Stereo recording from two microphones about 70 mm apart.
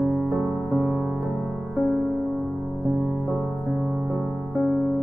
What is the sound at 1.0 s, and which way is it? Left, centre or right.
Music, centre.